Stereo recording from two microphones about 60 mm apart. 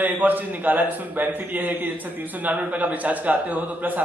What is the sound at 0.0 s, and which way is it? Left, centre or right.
A man's voice, right.